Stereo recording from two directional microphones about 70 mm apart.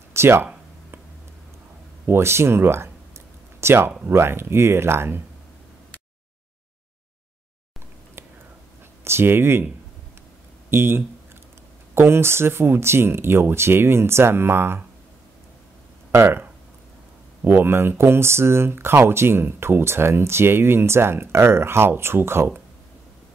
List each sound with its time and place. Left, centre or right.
0.1 s speech: right
2.0 s speech: right
9.0 s speech: right
10.7 s speech: right
17.4 s speech: right